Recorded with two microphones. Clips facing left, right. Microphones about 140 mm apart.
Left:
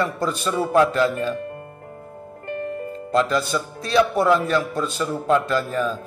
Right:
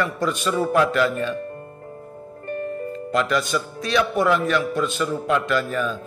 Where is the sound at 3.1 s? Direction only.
35° left (ahead or behind).